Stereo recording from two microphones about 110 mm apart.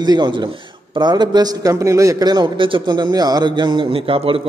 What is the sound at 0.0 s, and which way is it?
A man's voice, 40° right (ahead or behind).